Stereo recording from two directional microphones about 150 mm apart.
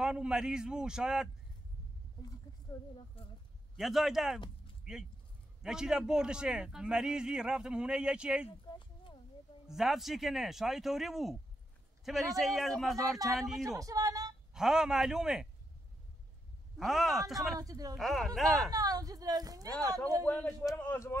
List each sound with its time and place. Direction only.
0.0 s a man's voice: 5° right (ahead or behind)
3.2 s speech: 40° left (ahead or behind)
3.7 s a man's voice: centre (ahead or behind)
8.6 s a sound: 35° left (ahead or behind)
9.7 s a man's voice: centre (ahead or behind)
13.7 s speech: 25° right (ahead or behind)
14.5 s a man's voice: 5° right (ahead or behind)
16.7 s a man's voice: centre (ahead or behind)
17.6 s speech: 25° right (ahead or behind)
17.9 s a man's voice: centre (ahead or behind)
18.7 s speech: 25° right (ahead or behind)
20.2 s a man's voice: 10° left (ahead or behind)